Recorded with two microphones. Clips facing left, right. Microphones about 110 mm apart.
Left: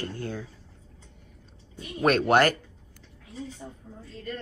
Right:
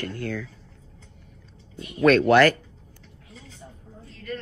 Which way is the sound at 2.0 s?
45° left (ahead or behind).